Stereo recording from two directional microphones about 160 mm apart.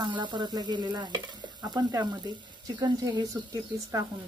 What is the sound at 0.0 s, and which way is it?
Stir, 30° right (ahead or behind).